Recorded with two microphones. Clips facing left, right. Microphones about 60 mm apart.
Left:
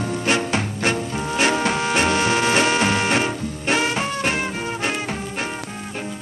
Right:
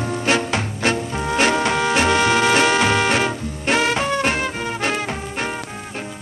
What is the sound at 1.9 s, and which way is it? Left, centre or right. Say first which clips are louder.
Music: right 3 dB; right.